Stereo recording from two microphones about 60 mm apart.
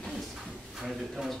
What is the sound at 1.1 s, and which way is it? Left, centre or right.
Speech, centre.